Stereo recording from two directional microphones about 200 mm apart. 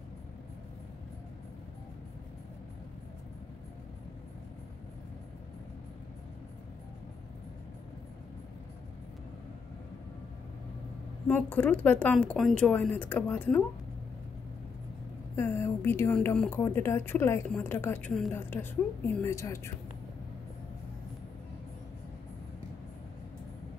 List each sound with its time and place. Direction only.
11.2 s speech: 10° left (ahead or behind)
15.3 s speech: 10° left (ahead or behind)